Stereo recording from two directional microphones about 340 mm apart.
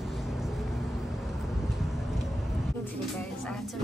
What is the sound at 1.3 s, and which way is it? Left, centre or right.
Tick-tock, centre.